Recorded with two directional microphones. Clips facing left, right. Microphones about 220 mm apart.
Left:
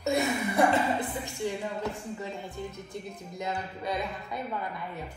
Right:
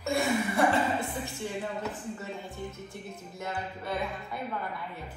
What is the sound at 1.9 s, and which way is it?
Speech, 15° left (ahead or behind).